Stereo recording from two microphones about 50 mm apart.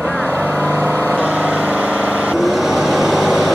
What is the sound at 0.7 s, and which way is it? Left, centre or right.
Vehicle, right.